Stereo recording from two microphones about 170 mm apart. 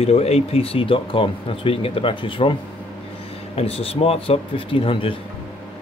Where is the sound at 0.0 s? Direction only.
40° left (ahead or behind).